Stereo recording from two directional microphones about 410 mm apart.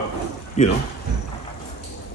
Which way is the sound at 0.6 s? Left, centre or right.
Centre.